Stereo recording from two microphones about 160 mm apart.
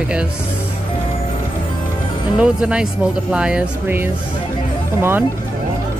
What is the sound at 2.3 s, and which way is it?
Speech, 5° right (ahead or behind).